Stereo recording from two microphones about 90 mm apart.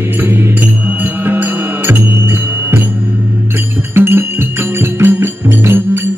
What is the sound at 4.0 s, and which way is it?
Music, 25° right (ahead or behind).